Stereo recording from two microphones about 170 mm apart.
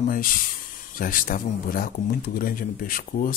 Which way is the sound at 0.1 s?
55° left (ahead or behind).